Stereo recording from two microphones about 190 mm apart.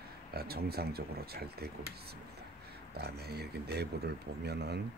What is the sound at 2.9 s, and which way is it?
Speech, 55° right (ahead or behind).